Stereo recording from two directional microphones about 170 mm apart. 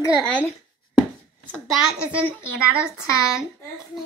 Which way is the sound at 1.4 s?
5° left (ahead or behind).